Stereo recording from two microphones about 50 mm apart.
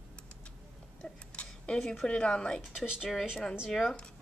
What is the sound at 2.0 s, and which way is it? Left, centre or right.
Speech, left.